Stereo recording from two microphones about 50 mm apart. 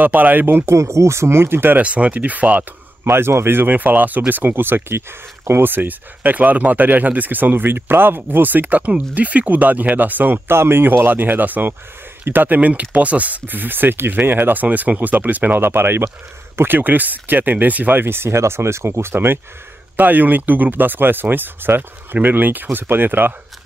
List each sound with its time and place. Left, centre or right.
0.0 s speech: right
0.7 s speech: right
1.8 s speech: right
3.0 s a man's voice: right
3.6 s speech: right
16.6 s speech: right
18.0 s a man's voice: right
18.4 s speech: right
20.0 s speech: right